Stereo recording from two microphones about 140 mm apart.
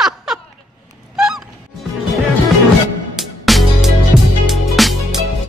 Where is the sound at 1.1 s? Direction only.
5° right (ahead or behind).